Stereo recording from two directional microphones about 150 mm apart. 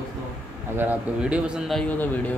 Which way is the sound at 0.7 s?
10° right (ahead or behind).